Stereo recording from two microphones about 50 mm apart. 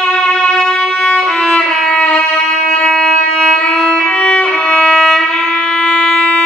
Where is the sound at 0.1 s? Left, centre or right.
Centre.